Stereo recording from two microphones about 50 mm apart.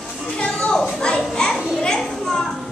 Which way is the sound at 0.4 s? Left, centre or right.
Left.